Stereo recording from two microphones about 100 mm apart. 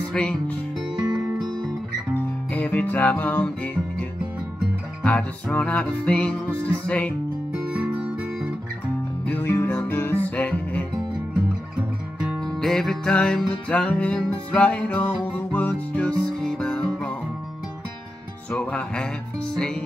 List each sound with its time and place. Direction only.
0.1 s music: 10° left (ahead or behind)
1.1 s music: 45° right (ahead or behind)
2.1 s music: 15° left (ahead or behind)
5.0 s music: 10° left (ahead or behind)
7.7 s guitar: 10° right (ahead or behind)
9.2 s music: 20° left (ahead or behind)
11.7 s music: 10° right (ahead or behind)
12.4 s music: 5° left (ahead or behind)
18.5 s music: 10° left (ahead or behind)